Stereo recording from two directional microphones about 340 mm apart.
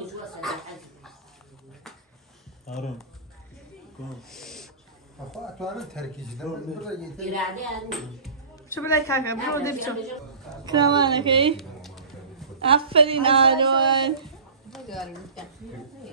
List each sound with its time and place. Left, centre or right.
0.4 s dog: centre
2.7 s a man's voice: centre
4.2 s a man's voice: centre
10.6 s speech: centre
11.5 s a sound: centre
12.6 s speech: centre
14.2 s a sound: centre